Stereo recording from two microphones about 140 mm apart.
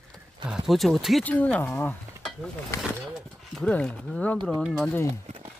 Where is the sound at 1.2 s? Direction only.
10° left (ahead or behind).